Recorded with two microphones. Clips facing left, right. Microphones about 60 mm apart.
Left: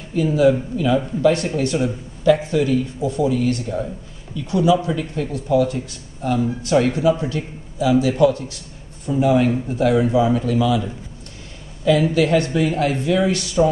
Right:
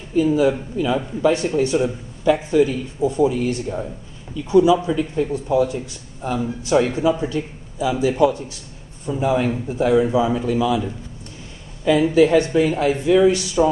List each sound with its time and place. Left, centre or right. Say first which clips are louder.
0.2 s speech: left 1 dB; centre
11.8 s speech: right 2 dB; right
13.6 s speech: left 1 dB; centre